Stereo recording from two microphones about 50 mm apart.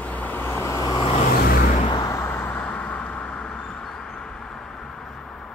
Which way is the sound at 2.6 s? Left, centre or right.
Left.